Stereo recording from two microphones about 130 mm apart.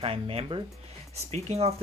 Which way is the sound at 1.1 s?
55° right (ahead or behind).